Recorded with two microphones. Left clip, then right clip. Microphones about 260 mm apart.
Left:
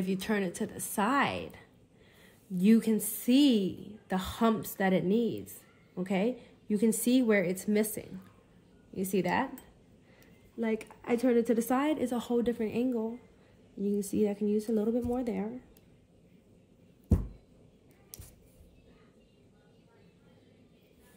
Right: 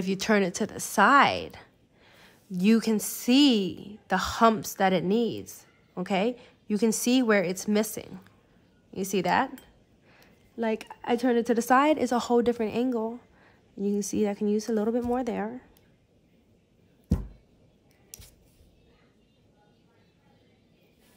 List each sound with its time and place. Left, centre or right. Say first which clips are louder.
0.0 s a woman's voice: right 7 dB; right
10.8 s a woman's voice: right 3 dB; right
13.8 s speech: right 4 dB; centre
14.1 s a woman's voice: right 2 dB; right